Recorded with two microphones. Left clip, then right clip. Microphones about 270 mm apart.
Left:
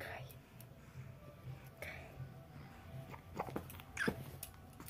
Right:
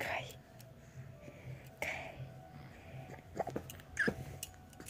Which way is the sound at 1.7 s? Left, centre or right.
Right.